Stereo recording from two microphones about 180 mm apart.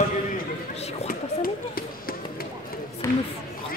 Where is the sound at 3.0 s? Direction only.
15° left (ahead or behind).